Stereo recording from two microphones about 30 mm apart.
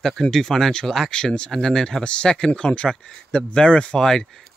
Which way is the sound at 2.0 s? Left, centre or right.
Left.